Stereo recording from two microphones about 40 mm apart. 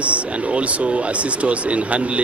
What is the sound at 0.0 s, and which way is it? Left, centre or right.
Speech, right.